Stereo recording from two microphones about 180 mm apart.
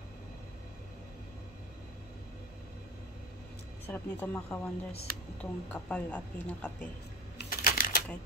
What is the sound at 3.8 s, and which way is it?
Speech, 10° left (ahead or behind).